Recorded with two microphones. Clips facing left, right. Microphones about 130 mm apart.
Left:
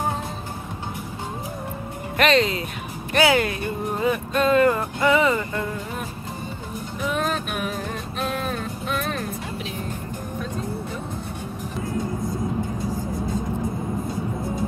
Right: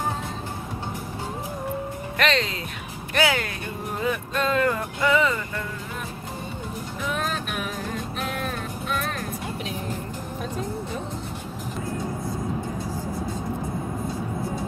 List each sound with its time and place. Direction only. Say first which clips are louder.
2.1 s speech: left 5 dB; 10° left (ahead or behind)